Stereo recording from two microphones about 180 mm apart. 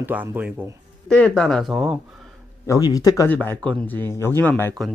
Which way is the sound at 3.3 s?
5° left (ahead or behind).